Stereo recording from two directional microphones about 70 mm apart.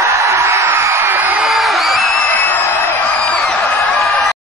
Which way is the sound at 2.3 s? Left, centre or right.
Left.